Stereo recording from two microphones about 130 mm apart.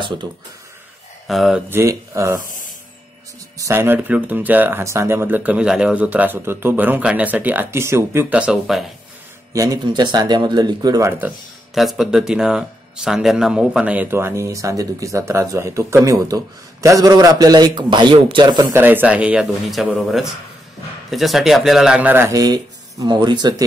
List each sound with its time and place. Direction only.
0.0 s speech: 35° right (ahead or behind)
1.2 s speech: centre (ahead or behind)
1.7 s speech: 20° right (ahead or behind)
3.5 s speech: 20° right (ahead or behind); by 8.9 s centre (ahead or behind)
9.5 s speech: 25° right (ahead or behind)
11.1 s speech: 15° right (ahead or behind)
11.7 s speech: centre (ahead or behind)
14.1 s speech: 20° right (ahead or behind); by 18.7 s 35° right (ahead or behind)
18.7 s speech: 15° right (ahead or behind)
22.3 s speech: 30° right (ahead or behind)